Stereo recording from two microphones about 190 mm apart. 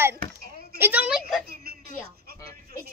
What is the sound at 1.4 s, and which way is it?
Music, 55° right (ahead or behind).